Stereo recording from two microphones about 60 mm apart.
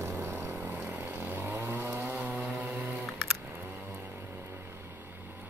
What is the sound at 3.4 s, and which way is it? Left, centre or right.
Vehicle, right.